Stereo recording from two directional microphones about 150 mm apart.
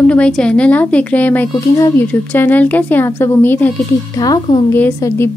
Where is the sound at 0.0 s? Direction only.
10° left (ahead or behind).